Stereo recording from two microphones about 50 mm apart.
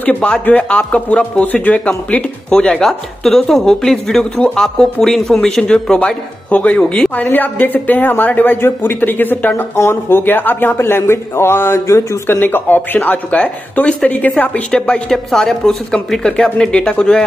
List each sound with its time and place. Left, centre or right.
0.0 s speech: left
2.7 s speech: centre
6.5 s speech: left
6.8 s speech: centre
7.2 s a woman's voice: left
9.8 s speech: left
10.8 s a woman's voice: left
13.3 s speech: left
15.0 s speech: centre
16.2 s speech: centre